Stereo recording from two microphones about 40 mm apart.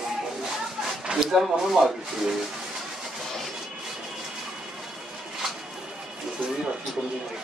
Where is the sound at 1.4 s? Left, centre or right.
Centre.